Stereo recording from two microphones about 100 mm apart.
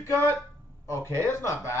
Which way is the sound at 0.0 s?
25° left (ahead or behind).